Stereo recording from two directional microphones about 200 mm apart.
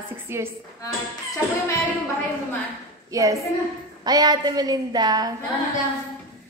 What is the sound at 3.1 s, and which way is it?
Speech, 15° right (ahead or behind).